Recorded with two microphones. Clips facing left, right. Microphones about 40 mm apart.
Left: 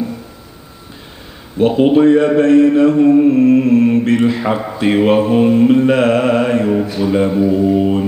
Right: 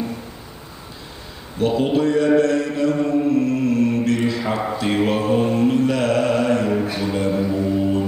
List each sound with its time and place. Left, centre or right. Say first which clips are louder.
1.6 s mantra: left 8 dB; left
7.0 s speech: left 7 dB; left
7.5 s mantra: left 7 dB; left